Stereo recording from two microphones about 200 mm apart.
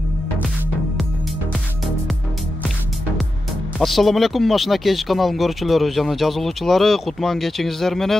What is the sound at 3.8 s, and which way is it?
Speech, centre (ahead or behind).